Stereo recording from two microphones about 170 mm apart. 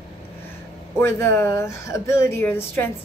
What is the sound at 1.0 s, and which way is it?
A woman's voice, 15° left (ahead or behind).